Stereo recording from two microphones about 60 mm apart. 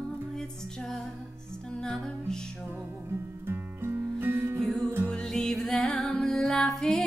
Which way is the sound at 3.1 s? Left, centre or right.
Right.